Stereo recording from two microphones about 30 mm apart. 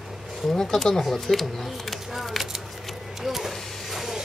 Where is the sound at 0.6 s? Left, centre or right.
Centre.